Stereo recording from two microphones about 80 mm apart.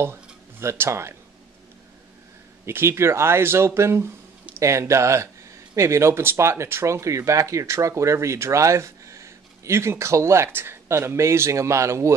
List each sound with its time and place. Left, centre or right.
0.0 s speech: right
2.6 s speech: right